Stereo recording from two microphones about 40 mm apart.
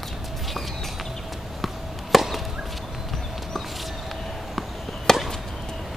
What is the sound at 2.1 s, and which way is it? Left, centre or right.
Chop, centre.